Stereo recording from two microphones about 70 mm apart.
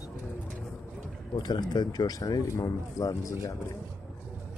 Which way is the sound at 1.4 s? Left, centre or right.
Left.